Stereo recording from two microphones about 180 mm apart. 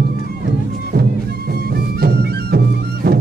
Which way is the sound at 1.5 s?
60° right (ahead or behind).